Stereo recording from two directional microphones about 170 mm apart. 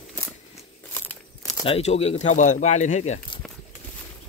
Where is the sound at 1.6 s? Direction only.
35° left (ahead or behind).